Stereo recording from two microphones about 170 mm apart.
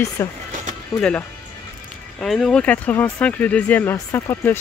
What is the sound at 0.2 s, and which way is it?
Speech, 15° left (ahead or behind).